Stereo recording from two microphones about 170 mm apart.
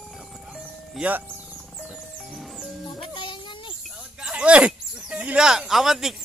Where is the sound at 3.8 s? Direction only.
5° right (ahead or behind).